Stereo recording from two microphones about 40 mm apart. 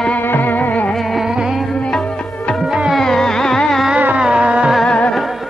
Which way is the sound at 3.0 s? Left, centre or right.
Centre.